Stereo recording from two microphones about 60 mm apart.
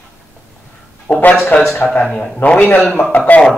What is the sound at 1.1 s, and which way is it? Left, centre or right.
Speech, left.